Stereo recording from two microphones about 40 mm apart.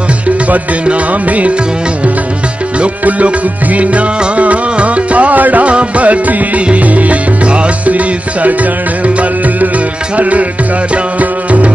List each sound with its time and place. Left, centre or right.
3.1 s music: right
11.1 s music: right